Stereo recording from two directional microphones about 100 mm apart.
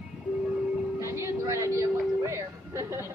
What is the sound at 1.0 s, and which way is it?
Music, 30° right (ahead or behind).